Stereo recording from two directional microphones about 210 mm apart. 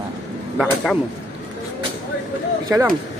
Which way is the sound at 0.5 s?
Centre (ahead or behind).